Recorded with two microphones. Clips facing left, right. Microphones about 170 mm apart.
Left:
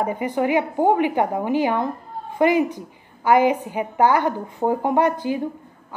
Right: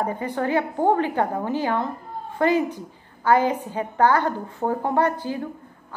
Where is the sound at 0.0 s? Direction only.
15° left (ahead or behind).